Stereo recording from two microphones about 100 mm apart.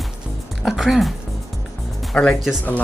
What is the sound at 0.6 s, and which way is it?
Speech, centre (ahead or behind).